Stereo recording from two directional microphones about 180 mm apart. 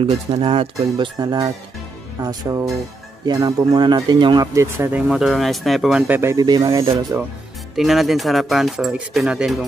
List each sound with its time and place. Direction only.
0.0 s speech: 30° right (ahead or behind); by 5.0 s 15° right (ahead or behind)
5.0 s speech: centre (ahead or behind); by 7.2 s 20° right (ahead or behind)
7.7 s speech: centre (ahead or behind)